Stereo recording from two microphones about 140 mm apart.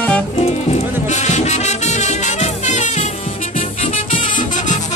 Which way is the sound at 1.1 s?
55° left (ahead or behind).